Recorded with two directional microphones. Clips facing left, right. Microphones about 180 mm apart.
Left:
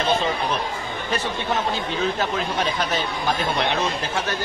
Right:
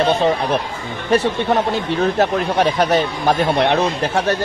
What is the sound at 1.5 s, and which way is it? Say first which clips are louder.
Speech: right 5 dB; 65° right (ahead or behind).